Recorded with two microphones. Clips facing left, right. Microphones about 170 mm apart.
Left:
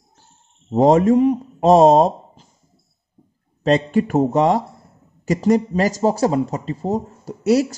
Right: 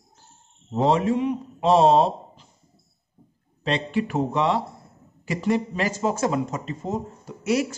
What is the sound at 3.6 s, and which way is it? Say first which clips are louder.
Speech: left 8 dB; 45° left (ahead or behind).